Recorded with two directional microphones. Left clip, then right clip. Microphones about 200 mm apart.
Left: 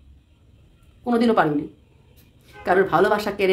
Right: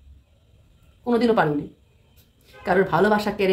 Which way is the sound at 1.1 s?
15° left (ahead or behind).